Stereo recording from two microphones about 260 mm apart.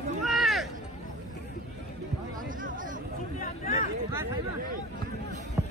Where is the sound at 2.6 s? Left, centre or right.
Right.